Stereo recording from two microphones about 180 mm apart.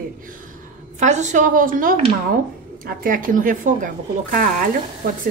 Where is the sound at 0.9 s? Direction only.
40° right (ahead or behind).